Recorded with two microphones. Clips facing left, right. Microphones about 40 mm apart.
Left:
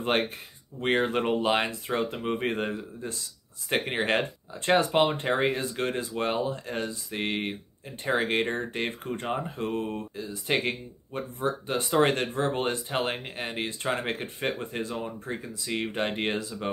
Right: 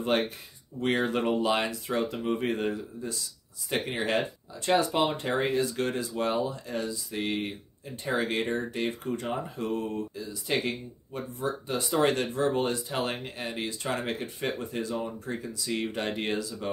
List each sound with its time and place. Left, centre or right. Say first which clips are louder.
0.7 s speech: left 2 dB; left